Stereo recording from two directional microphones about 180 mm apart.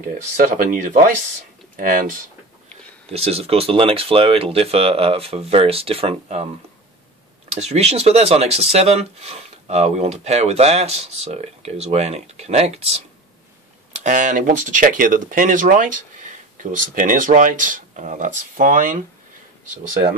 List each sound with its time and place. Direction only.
0.4 s speech: 50° right (ahead or behind)
3.1 s speech: 35° right (ahead or behind)